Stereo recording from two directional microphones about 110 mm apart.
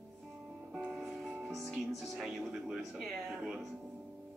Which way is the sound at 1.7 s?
5° right (ahead or behind).